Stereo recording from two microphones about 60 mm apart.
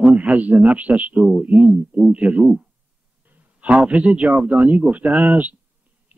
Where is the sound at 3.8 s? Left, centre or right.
Centre.